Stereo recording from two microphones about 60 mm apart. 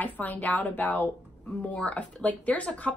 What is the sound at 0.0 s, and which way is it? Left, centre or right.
Speech, left.